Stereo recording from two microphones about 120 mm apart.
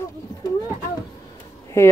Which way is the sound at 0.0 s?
25° left (ahead or behind).